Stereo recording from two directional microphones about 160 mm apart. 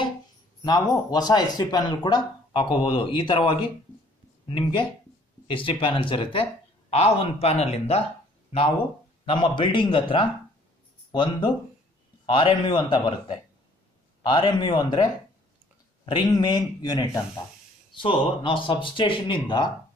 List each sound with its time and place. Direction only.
0.7 s speech: 25° left (ahead or behind); by 8.0 s 40° left (ahead or behind)
9.2 s speech: 30° left (ahead or behind)
16.1 s speech: 30° left (ahead or behind)